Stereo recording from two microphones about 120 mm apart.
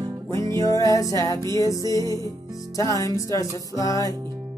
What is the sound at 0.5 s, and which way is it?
Music, 25° left (ahead or behind).